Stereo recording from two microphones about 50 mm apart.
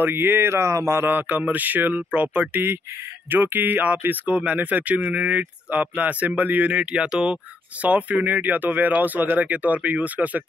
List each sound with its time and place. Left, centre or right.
0.0 s speech: right
0.6 s speech: right
1.0 s speech: right; by 7.3 s centre
7.8 s speech: right